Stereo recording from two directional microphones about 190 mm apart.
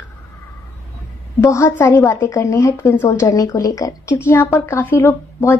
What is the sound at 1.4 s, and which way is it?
A woman's voice, 15° left (ahead or behind).